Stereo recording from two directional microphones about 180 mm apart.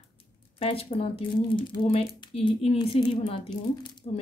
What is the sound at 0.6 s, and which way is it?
Speech, 30° left (ahead or behind).